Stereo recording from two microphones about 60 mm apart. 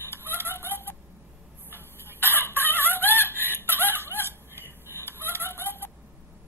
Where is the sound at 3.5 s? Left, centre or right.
Right.